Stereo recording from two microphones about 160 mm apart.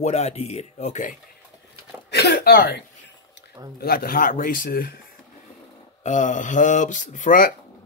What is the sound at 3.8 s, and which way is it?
Speech, 70° left (ahead or behind).